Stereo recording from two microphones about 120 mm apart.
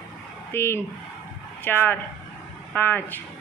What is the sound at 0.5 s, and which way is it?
Speech, 20° left (ahead or behind).